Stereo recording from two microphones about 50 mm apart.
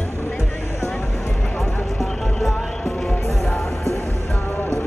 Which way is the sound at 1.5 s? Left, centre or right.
Centre.